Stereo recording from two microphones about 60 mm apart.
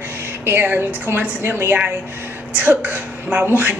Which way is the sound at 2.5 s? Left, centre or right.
Right.